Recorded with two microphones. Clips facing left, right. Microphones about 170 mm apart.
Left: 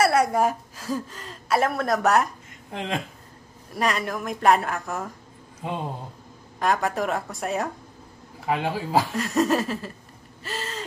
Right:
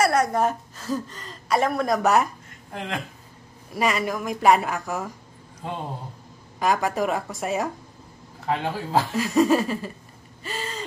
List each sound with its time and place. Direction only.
0.0 s a woman's voice: 5° left (ahead or behind)
2.7 s speech: 20° left (ahead or behind)
3.7 s a woman's voice: centre (ahead or behind)
6.6 s a woman's voice: centre (ahead or behind)
8.5 s a woman's voice: 10° left (ahead or behind)